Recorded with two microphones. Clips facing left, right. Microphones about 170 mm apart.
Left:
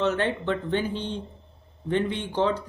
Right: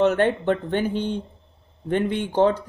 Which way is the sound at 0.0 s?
50° right (ahead or behind).